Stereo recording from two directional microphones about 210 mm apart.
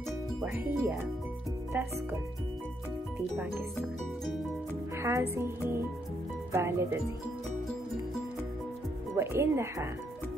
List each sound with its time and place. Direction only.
0.4 s speech: 10° right (ahead or behind)
4.9 s music: 15° right (ahead or behind)
5.3 s speech: 10° right (ahead or behind)
9.1 s speech: 10° right (ahead or behind)